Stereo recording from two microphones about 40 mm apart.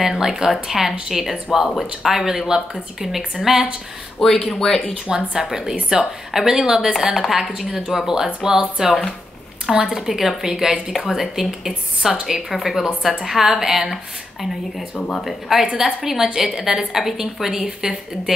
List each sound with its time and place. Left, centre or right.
0.0 s a woman's voice: centre
4.2 s speech: centre
4.9 s a woman's voice: centre
15.0 s speech: left
15.2 s a woman's voice: centre
15.6 s a woman's voice: centre